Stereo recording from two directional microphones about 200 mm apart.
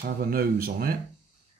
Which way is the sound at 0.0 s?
45° right (ahead or behind).